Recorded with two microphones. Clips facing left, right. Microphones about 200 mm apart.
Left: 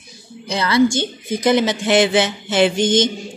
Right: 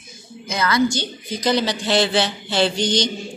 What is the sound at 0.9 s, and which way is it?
Speech, 25° left (ahead or behind).